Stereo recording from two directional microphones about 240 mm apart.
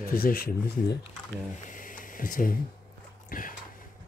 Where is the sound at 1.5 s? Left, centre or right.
Left.